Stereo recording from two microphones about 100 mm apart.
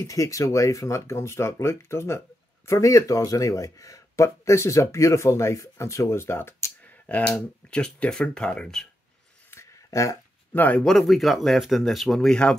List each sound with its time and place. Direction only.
0.0 s speech: 35° left (ahead or behind); by 8.8 s 10° left (ahead or behind)
9.5 s a sound: 30° left (ahead or behind)
10.5 s speech: 20° left (ahead or behind)
10.8 s speech: 5° left (ahead or behind)